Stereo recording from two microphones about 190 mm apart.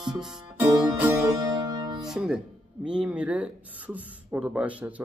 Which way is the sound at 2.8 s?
5° right (ahead or behind).